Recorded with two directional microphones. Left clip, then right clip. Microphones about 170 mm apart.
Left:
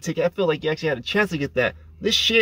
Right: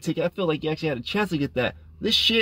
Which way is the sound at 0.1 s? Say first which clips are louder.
Left 3 dB; 15° right (ahead or behind).